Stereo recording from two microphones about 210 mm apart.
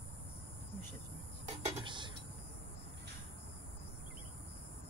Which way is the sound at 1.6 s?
20° right (ahead or behind).